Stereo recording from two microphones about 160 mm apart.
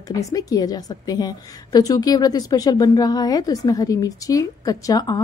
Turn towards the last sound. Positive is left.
turn(degrees=25)  # may be behind; listen again after turning